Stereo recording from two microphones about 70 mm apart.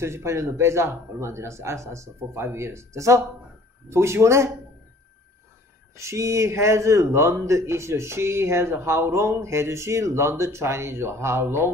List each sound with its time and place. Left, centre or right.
0.0 s a man's voice: right
5.9 s a man's voice: right